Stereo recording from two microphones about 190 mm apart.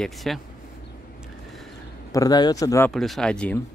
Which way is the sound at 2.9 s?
Centre (ahead or behind).